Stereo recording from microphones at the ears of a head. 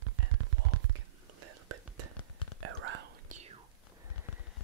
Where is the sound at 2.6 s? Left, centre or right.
Right.